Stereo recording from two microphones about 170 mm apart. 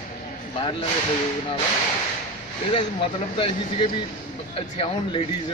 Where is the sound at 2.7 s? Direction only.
30° left (ahead or behind).